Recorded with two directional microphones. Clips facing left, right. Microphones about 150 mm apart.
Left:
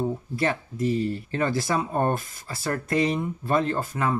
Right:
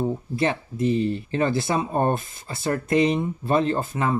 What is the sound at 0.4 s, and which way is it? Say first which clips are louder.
Speech: right 2 dB; 25° right (ahead or behind).